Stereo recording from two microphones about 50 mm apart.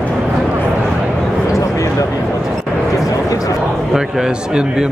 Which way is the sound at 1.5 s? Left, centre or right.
Left.